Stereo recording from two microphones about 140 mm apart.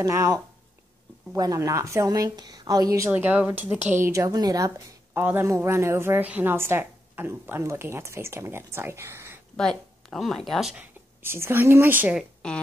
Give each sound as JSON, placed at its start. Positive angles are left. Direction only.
{"t": 0.0, "sound": "a woman's voice", "side_deg": -25}
{"t": 9.6, "sound": "speech", "side_deg": 5}
{"t": 11.2, "sound": "a woman's voice", "side_deg": -15}